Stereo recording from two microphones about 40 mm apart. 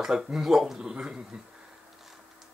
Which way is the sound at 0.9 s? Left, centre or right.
Right.